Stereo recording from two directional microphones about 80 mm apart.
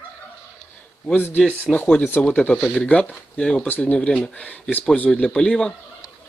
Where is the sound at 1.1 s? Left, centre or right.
Left.